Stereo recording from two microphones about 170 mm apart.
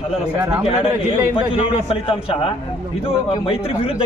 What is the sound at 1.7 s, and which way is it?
A man's voice, 35° left (ahead or behind).